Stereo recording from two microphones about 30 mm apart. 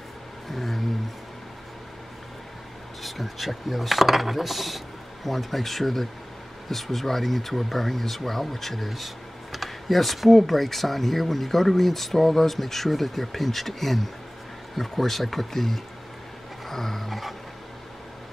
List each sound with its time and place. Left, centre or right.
0.5 s a sound: centre
3.0 s speech: centre
16.6 s dog: centre